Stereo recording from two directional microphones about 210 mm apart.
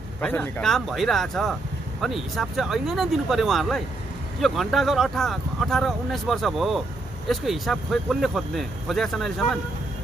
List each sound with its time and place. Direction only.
0.2 s speech: 5° left (ahead or behind)